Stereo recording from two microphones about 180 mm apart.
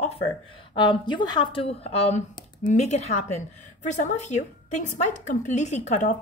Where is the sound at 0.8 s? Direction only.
25° left (ahead or behind).